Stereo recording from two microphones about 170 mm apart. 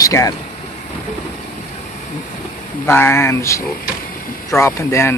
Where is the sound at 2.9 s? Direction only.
10° left (ahead or behind).